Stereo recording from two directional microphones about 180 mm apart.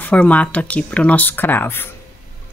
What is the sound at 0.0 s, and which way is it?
Speech, 5° left (ahead or behind).